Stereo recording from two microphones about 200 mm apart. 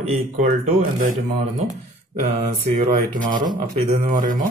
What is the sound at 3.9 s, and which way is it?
Speech, 40° right (ahead or behind).